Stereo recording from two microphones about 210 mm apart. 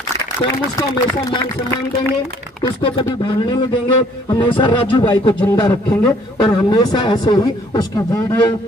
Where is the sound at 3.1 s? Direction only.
20° left (ahead or behind).